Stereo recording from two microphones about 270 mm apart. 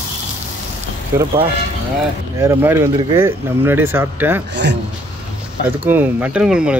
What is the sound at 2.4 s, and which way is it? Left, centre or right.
Speech, centre.